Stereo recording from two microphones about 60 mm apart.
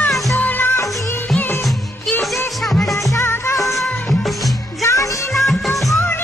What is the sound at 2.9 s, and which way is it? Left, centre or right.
Music, left.